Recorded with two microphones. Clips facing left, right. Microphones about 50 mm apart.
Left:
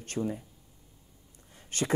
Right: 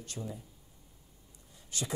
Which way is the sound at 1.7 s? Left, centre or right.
Left.